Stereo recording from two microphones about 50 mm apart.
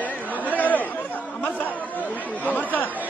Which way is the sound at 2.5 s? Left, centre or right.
Left.